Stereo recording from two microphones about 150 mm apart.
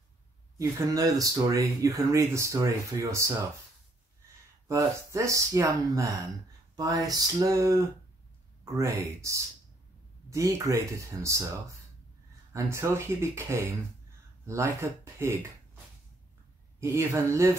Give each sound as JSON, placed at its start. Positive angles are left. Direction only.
{"t": 0.6, "sound": "speech", "side_deg": -20}
{"t": 4.6, "sound": "speech", "side_deg": -20}
{"t": 12.5, "sound": "speech", "side_deg": -20}
{"t": 16.8, "sound": "speech", "side_deg": -20}